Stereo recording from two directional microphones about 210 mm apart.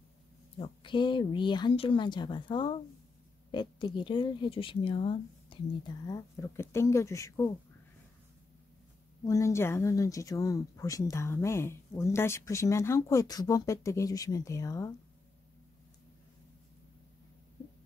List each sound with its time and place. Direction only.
0.6 s speech: 25° left (ahead or behind)
6.0 s speech: 15° left (ahead or behind)
9.2 s speech: 15° left (ahead or behind)